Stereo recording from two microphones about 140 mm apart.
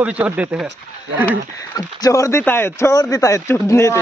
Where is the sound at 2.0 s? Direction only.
25° left (ahead or behind).